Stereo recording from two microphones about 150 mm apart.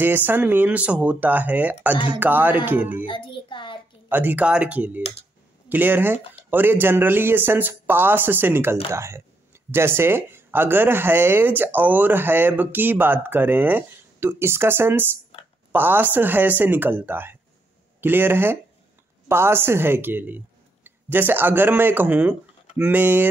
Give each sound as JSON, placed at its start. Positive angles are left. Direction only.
{"t": 0.0, "sound": "speech", "side_deg": -10}
{"t": 3.1, "sound": "child singing", "side_deg": 30}
{"t": 4.1, "sound": "speech", "side_deg": -10}